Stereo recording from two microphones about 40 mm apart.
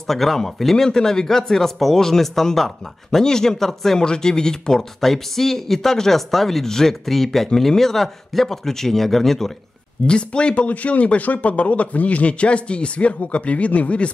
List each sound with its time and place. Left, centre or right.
0.0 s speech: centre
0.8 s speech: centre
4.0 s speech: centre
10.0 s speech: left